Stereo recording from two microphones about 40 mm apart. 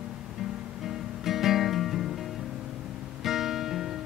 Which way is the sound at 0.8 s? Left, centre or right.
Centre.